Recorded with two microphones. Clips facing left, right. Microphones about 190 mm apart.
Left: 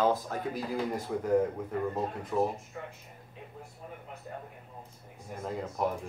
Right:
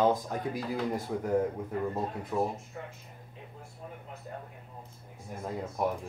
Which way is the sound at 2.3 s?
10° right (ahead or behind).